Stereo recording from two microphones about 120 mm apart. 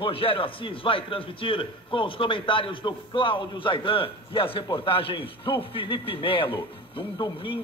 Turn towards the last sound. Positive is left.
turn(degrees=45)  # may be behind; listen again after turning